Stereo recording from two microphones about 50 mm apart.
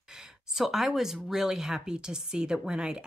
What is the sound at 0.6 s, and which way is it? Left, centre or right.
A woman's voice, centre.